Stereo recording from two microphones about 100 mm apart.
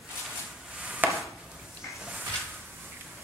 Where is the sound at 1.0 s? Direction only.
15° right (ahead or behind).